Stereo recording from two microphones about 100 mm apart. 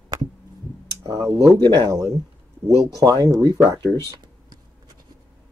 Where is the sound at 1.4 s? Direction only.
45° right (ahead or behind).